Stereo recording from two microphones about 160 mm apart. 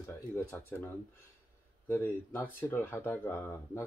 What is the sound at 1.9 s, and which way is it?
Speech, 15° left (ahead or behind).